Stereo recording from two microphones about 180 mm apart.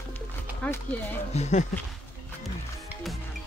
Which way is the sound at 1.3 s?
40° left (ahead or behind).